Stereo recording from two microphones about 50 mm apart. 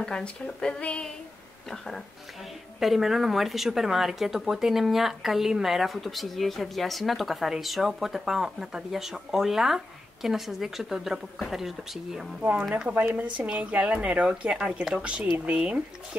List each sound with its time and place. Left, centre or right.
0.0 s speech: centre
2.8 s speech: centre
12.4 s speech: right
13.5 s speech: right